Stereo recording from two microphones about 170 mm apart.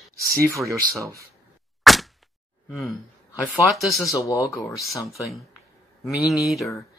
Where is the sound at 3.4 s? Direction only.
5° left (ahead or behind).